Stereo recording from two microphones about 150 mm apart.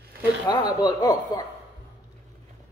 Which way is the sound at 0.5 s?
25° left (ahead or behind).